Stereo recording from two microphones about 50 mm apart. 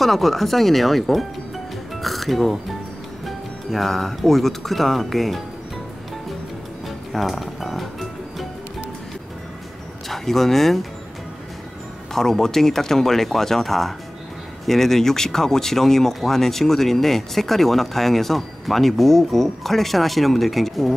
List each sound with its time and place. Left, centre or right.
0.0 s speech: centre
7.1 s music: centre
10.0 s speech: centre
12.1 s speech: centre